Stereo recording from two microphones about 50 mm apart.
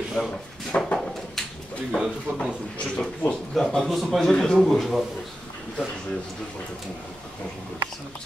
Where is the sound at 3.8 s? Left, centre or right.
Centre.